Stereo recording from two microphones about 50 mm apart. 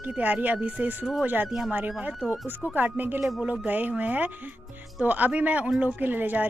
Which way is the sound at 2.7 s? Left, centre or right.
Right.